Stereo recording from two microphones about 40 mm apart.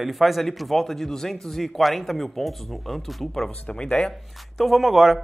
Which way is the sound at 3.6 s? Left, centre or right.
Left.